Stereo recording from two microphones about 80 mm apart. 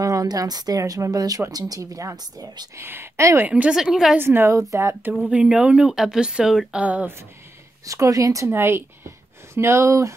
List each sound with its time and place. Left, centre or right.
0.0 s speech: right
2.7 s a woman's voice: right
3.4 s a woman's voice: centre
3.7 s a woman's voice: centre
4.2 s a woman's voice: right
4.6 s a woman's voice: right
5.3 s a woman's voice: centre
6.8 s a woman's voice: centre
7.8 s speech: right
8.5 s speech: right